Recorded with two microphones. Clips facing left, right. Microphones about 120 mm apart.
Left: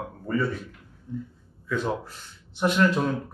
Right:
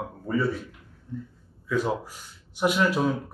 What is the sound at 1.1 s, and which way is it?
Speech, 15° left (ahead or behind).